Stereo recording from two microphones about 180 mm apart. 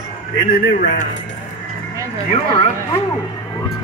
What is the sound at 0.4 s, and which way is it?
Speech, 50° left (ahead or behind).